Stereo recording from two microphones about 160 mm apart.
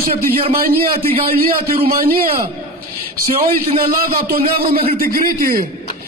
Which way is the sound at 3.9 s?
70° right (ahead or behind).